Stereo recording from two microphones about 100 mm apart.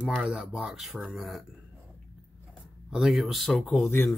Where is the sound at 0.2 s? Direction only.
5° right (ahead or behind).